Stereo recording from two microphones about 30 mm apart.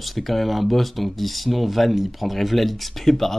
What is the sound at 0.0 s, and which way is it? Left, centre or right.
Speech, centre.